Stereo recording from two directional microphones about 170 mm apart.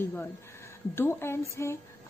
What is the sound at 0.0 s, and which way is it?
A woman's voice, 10° left (ahead or behind).